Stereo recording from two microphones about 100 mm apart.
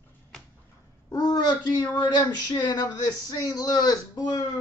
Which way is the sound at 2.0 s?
40° left (ahead or behind).